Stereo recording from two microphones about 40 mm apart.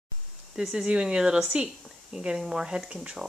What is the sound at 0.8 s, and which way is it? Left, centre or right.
Speech, right.